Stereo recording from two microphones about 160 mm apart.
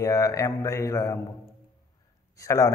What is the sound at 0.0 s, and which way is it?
A man's voice, 20° left (ahead or behind).